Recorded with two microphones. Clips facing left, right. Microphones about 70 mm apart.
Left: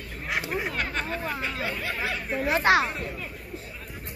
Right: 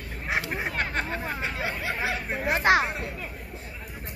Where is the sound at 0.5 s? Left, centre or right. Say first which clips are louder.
Even; right.